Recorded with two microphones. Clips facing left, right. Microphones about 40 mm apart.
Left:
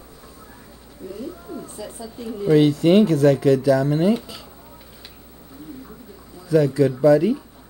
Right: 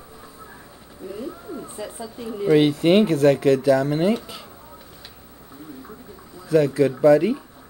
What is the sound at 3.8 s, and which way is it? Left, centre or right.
Speech, right.